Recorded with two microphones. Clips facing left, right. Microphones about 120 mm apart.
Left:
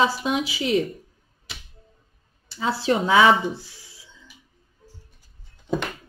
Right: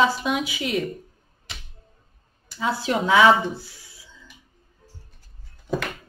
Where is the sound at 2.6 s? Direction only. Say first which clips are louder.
Left 2 dB; 25° left (ahead or behind).